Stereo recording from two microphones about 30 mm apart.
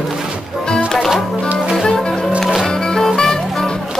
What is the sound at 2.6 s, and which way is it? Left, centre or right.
Music, left.